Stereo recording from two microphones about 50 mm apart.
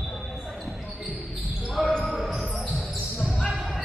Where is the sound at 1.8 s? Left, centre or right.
Centre.